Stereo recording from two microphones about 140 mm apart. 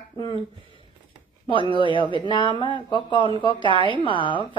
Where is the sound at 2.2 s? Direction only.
35° left (ahead or behind).